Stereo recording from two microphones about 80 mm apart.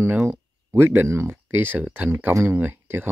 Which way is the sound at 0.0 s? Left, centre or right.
Right.